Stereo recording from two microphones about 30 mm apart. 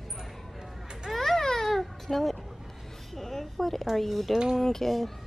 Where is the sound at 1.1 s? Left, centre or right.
Centre.